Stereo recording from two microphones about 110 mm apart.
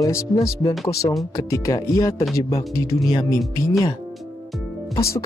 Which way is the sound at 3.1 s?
40° left (ahead or behind).